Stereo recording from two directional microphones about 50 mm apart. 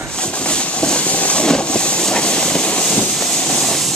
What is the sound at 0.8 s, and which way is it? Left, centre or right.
Vehicle, left.